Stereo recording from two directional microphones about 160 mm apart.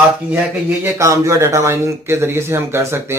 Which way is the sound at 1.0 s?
20° right (ahead or behind).